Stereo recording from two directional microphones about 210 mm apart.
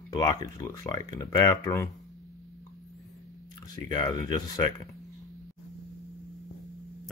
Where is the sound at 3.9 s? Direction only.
20° left (ahead or behind).